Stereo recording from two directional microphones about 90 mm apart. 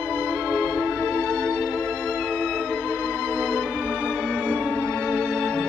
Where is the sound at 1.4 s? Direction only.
Centre (ahead or behind).